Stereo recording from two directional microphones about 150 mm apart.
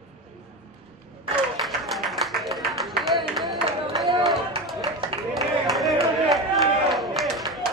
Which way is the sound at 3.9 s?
Centre (ahead or behind).